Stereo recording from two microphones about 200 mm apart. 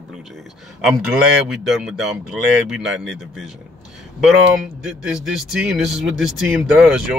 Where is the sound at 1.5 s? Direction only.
Centre (ahead or behind).